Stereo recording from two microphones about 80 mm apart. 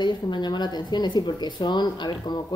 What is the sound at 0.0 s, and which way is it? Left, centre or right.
A woman's voice, left.